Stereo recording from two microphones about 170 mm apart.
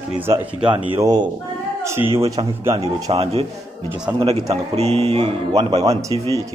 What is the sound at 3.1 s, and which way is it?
A man's voice, 35° right (ahead or behind).